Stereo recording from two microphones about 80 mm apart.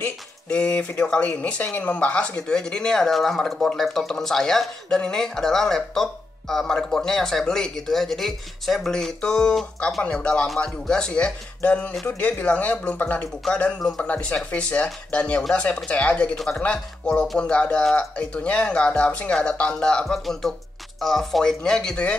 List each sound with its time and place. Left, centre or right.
0.5 s speech: centre
13.7 s speech: centre
14.0 s speech: centre